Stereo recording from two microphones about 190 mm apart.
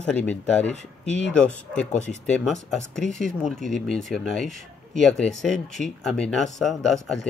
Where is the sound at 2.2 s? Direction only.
5° left (ahead or behind).